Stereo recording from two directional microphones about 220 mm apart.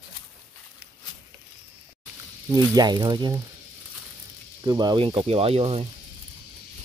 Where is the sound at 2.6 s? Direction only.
20° right (ahead or behind).